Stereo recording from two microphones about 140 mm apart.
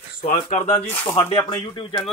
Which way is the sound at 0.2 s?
70° left (ahead or behind).